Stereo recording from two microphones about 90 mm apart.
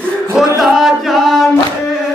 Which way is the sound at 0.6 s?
Centre (ahead or behind).